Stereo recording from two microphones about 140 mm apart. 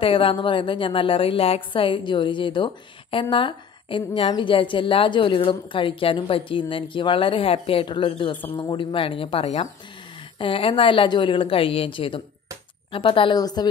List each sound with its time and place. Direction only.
0.0 s a woman's voice: 40° left (ahead or behind)